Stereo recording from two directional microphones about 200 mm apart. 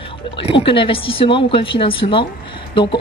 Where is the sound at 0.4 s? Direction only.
25° left (ahead or behind).